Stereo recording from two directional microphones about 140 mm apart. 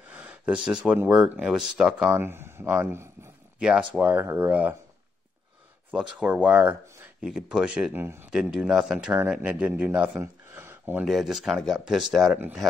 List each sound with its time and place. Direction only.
0.1 s a sound: 10° right (ahead or behind)
1.1 s speech: 5° right (ahead or behind)
5.9 s speech: 5° right (ahead or behind)
7.9 s speech: 15° right (ahead or behind)
11.1 s speech: centre (ahead or behind)